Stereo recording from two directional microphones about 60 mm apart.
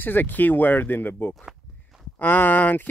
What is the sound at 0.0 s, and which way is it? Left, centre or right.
Speech, left.